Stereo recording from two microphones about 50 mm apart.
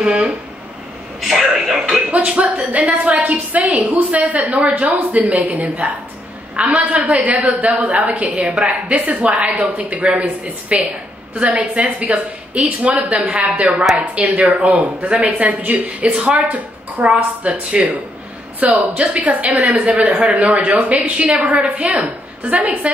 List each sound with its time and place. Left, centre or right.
0.0 s a woman's voice: right
1.4 s speech: centre
2.0 s a woman's voice: right